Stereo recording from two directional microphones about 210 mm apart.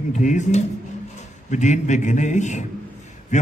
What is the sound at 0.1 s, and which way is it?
A man's voice, 35° left (ahead or behind).